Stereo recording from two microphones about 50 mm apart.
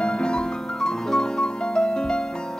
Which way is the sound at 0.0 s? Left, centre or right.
Centre.